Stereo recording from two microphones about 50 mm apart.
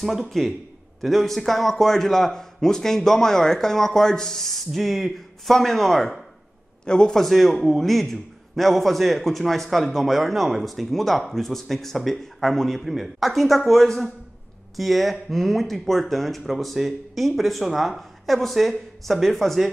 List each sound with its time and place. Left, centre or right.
0.0 s a man's voice: centre
6.8 s a man's voice: centre
7.2 s a man's voice: centre